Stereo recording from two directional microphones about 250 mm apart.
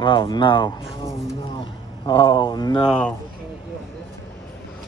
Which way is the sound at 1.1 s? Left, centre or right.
Centre.